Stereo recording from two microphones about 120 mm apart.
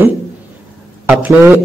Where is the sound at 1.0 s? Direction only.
15° right (ahead or behind).